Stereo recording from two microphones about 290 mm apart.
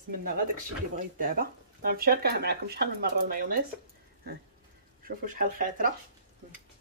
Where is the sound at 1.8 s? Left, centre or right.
Right.